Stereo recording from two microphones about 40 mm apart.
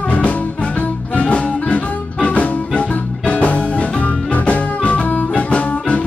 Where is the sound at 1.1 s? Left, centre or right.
Left.